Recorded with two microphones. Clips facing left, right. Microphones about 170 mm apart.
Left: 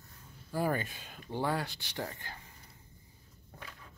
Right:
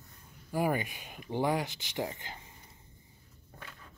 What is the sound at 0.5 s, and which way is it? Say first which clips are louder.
Speech: right 2 dB; 15° right (ahead or behind).